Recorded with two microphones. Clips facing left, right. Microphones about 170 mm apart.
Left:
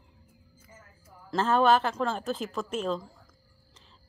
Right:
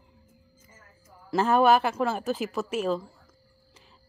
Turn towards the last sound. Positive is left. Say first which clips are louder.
# right 3 dB
turn(degrees=-5)  # may be behind; listen again after turning